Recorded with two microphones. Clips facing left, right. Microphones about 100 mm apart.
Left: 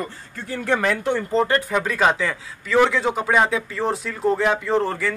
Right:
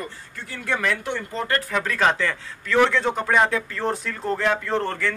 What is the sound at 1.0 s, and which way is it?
Speech, 40° left (ahead or behind).